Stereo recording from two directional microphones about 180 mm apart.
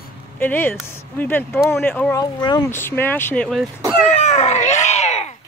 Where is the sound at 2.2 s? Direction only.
25° left (ahead or behind).